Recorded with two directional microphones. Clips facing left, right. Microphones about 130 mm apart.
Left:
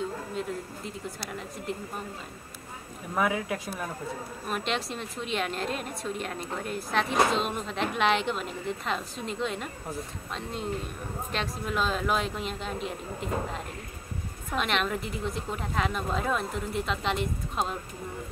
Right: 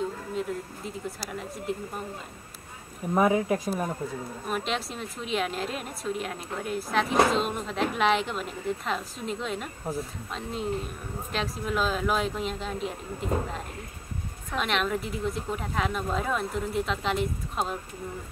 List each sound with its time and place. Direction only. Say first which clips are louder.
0.3 s a sound: right 2 dB; centre (ahead or behind)
1.7 s a woman's voice: right 3 dB; centre (ahead or behind)
3.2 s speech: right 5 dB; 35° right (ahead or behind)
4.5 s a woman's voice: even; centre (ahead or behind)